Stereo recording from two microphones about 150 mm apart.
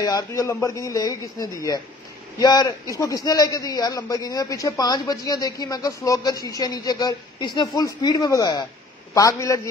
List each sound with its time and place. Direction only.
0.0 s a man's voice: 25° left (ahead or behind)